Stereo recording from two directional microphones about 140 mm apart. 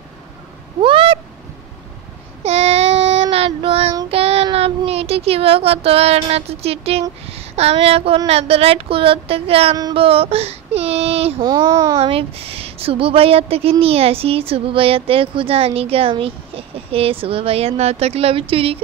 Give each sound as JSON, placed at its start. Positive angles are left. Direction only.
{"t": 0.7, "sound": "owl", "side_deg": -40}
{"t": 2.4, "sound": "child singing", "side_deg": -45}
{"t": 4.1, "sound": "a woman's voice", "side_deg": -45}
{"t": 9.9, "sound": "a sound", "side_deg": -40}
{"t": 11.4, "sound": "a child's voice", "side_deg": -25}
{"t": 12.0, "sound": "a woman's voice", "side_deg": -40}